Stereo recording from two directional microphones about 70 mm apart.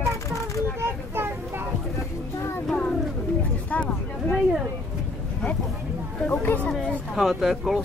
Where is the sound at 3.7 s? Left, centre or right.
Left.